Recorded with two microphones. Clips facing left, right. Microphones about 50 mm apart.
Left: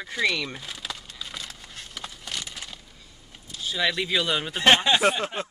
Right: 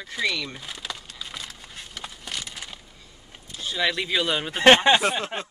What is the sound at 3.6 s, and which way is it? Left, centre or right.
Speech, centre.